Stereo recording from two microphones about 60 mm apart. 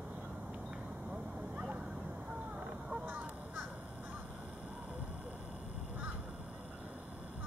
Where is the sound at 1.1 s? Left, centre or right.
Right.